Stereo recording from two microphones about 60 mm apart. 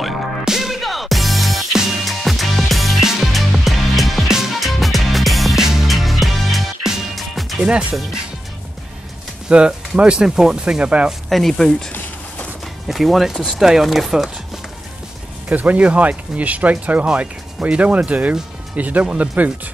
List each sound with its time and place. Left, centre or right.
0.0 s music: centre
9.5 s speech: centre
11.1 s speech: centre
15.5 s speech: right